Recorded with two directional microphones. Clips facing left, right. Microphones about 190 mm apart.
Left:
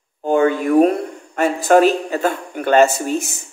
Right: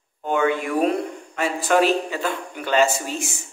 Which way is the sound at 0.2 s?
35° left (ahead or behind).